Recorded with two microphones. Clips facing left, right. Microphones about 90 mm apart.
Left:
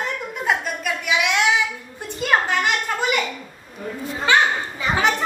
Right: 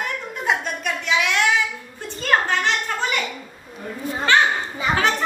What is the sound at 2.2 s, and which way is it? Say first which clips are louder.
Children playing: even; 10° left (ahead or behind).